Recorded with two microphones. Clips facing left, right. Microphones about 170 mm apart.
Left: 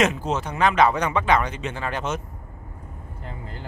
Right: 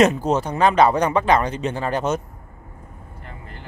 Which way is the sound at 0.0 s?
40° right (ahead or behind).